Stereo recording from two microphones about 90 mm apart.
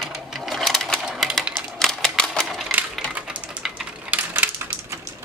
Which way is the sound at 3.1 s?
15° right (ahead or behind).